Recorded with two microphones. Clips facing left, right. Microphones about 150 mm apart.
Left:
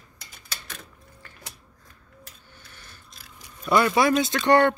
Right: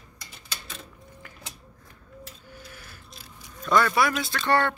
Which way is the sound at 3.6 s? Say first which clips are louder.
Left 2 dB; 15° left (ahead or behind).